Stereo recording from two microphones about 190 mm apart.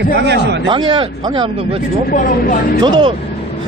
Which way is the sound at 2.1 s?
50° left (ahead or behind).